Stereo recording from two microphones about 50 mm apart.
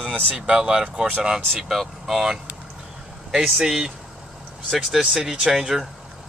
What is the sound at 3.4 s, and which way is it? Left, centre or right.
Speech, centre.